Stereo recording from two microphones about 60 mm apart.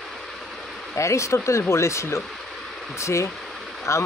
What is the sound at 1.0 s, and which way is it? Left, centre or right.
Speech, left.